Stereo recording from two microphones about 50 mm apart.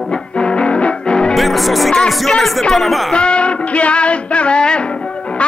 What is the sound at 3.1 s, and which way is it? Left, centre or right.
Music, left.